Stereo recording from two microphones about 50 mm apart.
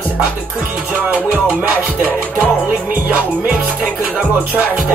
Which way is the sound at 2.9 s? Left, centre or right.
Right.